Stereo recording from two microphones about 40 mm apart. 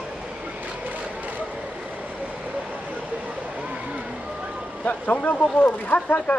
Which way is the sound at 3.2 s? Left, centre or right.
Right.